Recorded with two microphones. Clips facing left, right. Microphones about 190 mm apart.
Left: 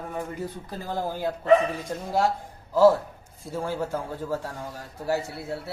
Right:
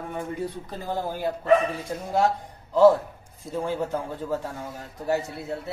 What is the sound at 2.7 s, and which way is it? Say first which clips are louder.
A man's voice: right 1 dB; 10° left (ahead or behind).